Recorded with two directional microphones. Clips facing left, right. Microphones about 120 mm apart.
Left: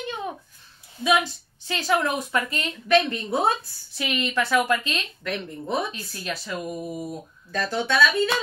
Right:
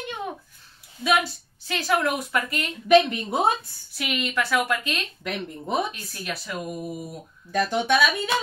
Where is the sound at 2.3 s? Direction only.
30° left (ahead or behind).